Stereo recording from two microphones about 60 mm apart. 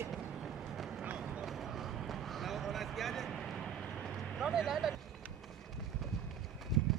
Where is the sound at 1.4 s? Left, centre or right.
Centre.